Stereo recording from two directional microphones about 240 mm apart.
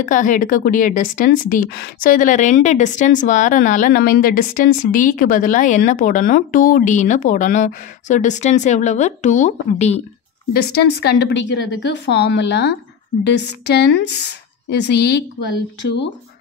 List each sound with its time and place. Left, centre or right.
0.0 s a woman's voice: left
10.5 s a woman's voice: left